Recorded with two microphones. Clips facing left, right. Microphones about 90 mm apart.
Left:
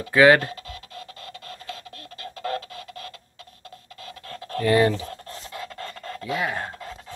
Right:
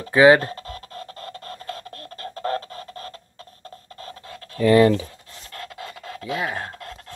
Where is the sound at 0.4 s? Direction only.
40° right (ahead or behind).